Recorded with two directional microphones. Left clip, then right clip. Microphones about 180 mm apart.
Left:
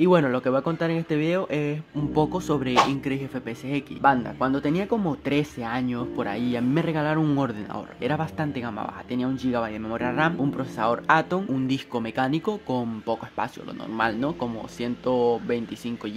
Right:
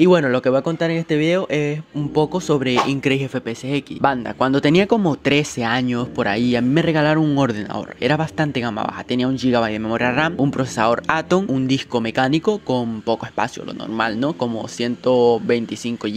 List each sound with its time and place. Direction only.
0.0 s speech: 30° right (ahead or behind)
2.7 s speech: centre (ahead or behind)
3.0 s speech: 45° right (ahead or behind)
3.4 s speech: 25° right (ahead or behind)
4.0 s speech: 50° right (ahead or behind); by 16.2 s 30° right (ahead or behind)